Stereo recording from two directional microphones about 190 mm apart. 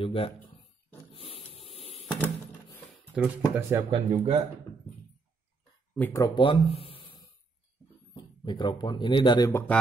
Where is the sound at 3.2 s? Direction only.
5° right (ahead or behind).